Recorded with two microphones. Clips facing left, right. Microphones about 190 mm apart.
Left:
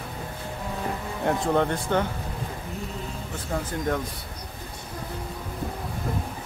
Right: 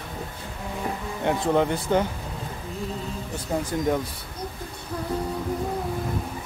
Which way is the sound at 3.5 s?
20° right (ahead or behind).